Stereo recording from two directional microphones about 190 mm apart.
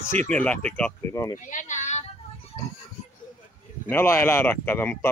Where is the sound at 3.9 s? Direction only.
10° left (ahead or behind).